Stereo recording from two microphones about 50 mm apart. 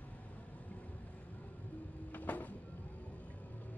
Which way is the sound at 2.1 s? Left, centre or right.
Left.